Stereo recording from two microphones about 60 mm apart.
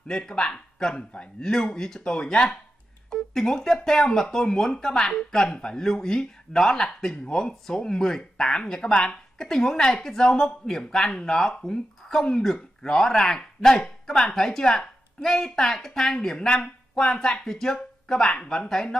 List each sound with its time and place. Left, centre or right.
0.1 s speech: centre